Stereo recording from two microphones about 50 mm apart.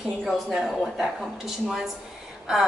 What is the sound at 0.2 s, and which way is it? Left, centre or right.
A woman's voice, centre.